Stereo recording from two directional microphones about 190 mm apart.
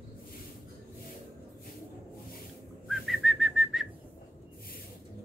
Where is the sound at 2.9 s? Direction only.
Centre (ahead or behind).